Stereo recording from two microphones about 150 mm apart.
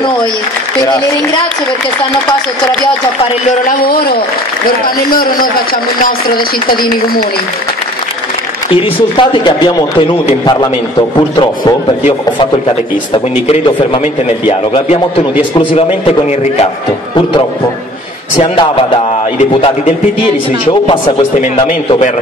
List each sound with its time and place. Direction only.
3.6 s a man's voice: 80° left
8.6 s a man's voice: 35° left (ahead or behind)
13.5 s speech: 35° left (ahead or behind)
15.5 s speech: 40° left (ahead or behind)
18.3 s speech: 35° left (ahead or behind)
20.2 s speech: 40° left (ahead or behind)